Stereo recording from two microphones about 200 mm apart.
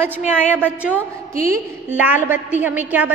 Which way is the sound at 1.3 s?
45° right (ahead or behind).